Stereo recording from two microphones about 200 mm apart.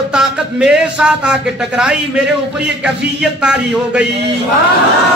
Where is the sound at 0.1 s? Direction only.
5° right (ahead or behind).